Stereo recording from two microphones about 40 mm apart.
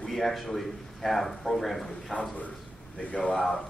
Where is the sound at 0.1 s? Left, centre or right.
Centre.